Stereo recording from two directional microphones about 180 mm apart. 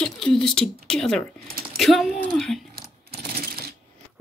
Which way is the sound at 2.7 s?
60° right (ahead or behind).